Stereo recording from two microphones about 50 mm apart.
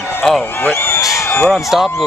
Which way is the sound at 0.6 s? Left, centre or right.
Left.